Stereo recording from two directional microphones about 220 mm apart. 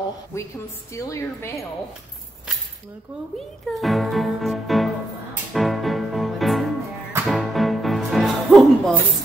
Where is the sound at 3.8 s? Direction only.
Centre (ahead or behind).